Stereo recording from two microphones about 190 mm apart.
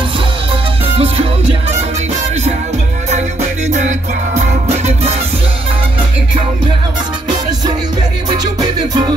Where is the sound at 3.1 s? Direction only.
40° right (ahead or behind).